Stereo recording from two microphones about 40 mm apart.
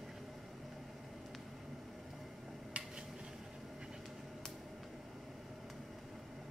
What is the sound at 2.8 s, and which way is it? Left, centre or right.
Dishes, right.